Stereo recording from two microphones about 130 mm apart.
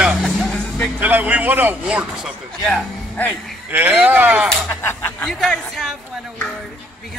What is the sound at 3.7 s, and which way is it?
Speech, 10° right (ahead or behind).